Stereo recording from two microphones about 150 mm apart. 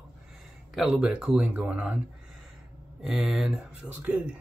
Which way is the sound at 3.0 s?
5° right (ahead or behind).